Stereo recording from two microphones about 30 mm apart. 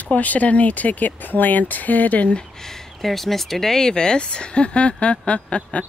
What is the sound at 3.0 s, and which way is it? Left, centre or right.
Speech, centre.